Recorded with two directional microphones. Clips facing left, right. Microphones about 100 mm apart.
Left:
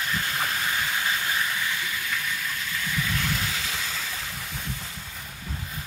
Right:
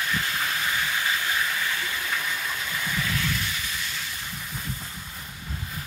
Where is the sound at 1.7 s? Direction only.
15° right (ahead or behind).